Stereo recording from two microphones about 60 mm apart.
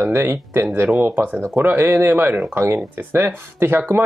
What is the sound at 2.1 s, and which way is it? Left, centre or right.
Speech, right.